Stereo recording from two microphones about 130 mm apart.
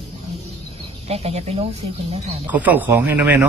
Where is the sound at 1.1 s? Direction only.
50° right (ahead or behind).